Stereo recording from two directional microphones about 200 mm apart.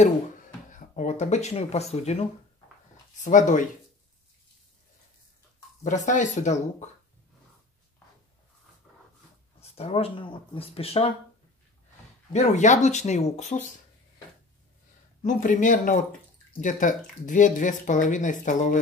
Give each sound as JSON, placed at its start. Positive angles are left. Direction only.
{"t": 0.7, "sound": "speech", "side_deg": 40}
{"t": 5.9, "sound": "speech", "side_deg": 40}
{"t": 8.9, "sound": "dog", "side_deg": -5}
{"t": 9.6, "sound": "speech", "side_deg": 30}
{"t": 12.3, "sound": "speech", "side_deg": 35}
{"t": 15.2, "sound": "speech", "side_deg": 40}